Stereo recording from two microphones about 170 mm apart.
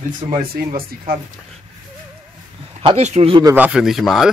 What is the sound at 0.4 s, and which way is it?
Speech, 60° right (ahead or behind).